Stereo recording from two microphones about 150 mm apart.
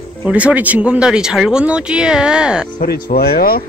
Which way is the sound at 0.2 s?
10° right (ahead or behind).